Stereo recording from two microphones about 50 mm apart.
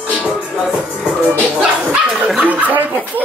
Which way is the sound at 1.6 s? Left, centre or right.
Centre.